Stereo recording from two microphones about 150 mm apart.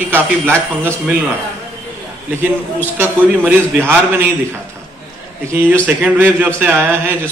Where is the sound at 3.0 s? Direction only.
15° right (ahead or behind).